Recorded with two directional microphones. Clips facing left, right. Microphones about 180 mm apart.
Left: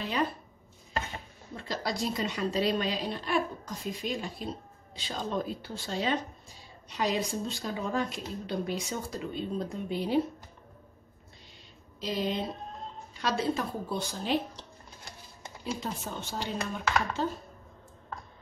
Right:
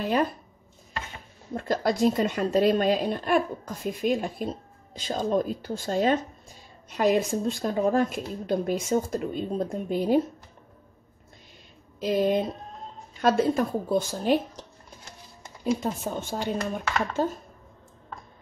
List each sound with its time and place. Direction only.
1.5 s a woman's voice: 50° right (ahead or behind)
12.0 s a woman's voice: 50° right (ahead or behind)